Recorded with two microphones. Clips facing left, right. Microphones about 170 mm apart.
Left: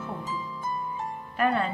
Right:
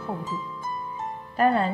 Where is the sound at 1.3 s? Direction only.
35° right (ahead or behind).